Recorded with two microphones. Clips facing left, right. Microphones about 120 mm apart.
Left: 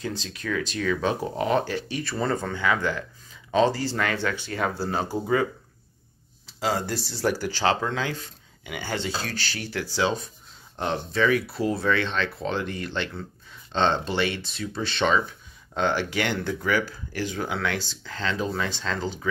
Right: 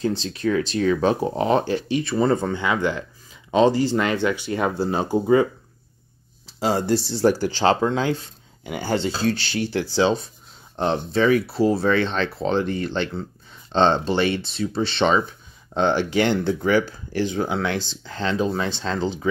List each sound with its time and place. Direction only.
0.0 s speech: 30° right (ahead or behind)